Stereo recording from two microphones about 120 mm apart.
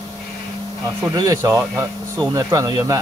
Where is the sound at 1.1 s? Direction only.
30° right (ahead or behind).